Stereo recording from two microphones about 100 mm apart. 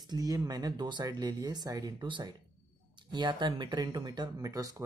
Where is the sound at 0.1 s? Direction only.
40° right (ahead or behind).